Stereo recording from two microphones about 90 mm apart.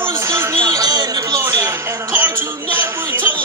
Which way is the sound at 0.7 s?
45° right (ahead or behind).